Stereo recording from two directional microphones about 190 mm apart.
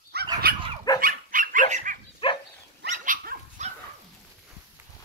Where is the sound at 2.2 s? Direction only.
30° left (ahead or behind).